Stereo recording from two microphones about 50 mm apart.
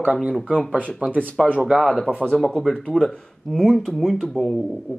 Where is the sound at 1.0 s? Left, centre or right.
Right.